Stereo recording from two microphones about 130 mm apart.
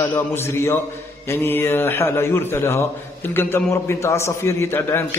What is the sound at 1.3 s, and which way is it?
A man's voice, 15° left (ahead or behind).